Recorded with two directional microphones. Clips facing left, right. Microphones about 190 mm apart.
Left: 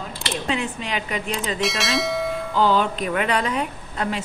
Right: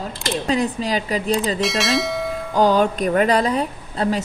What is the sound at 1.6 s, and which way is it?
Speech, centre (ahead or behind).